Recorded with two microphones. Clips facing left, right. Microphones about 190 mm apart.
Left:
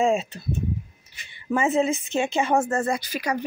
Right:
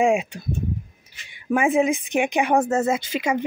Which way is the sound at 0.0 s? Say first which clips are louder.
Right 2 dB; 15° right (ahead or behind).